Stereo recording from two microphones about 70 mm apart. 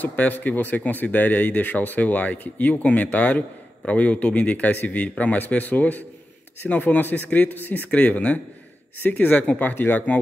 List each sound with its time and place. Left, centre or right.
0.0 s speech: left